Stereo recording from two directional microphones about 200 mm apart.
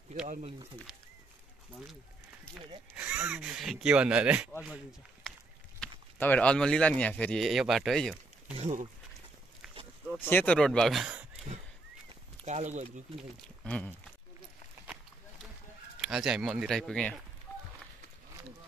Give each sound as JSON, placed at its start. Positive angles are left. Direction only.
{"t": 0.3, "sound": "speech", "side_deg": -35}
{"t": 3.0, "sound": "speech", "side_deg": -5}
{"t": 5.8, "sound": "speech", "side_deg": 10}
{"t": 8.5, "sound": "speech", "side_deg": -35}
{"t": 10.2, "sound": "speech", "side_deg": 10}
{"t": 12.4, "sound": "speech", "side_deg": -35}
{"t": 13.4, "sound": "speech", "side_deg": 5}
{"t": 16.0, "sound": "speech", "side_deg": 0}